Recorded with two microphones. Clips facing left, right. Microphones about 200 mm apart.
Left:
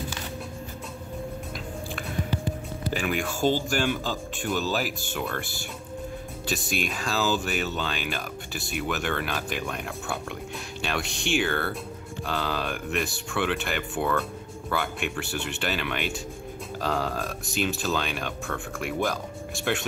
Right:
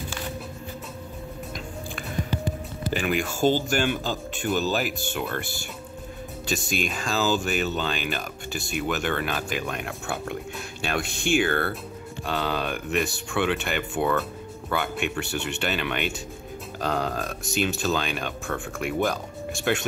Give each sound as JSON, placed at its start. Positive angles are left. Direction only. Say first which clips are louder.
{"t": 2.9, "sound": "speech", "louder": "right 2 dB", "side_deg": 0}
{"t": 10.8, "sound": "speech", "louder": "right 2 dB", "side_deg": -50}
{"t": 12.3, "sound": "speech", "louder": "right 2 dB", "side_deg": 0}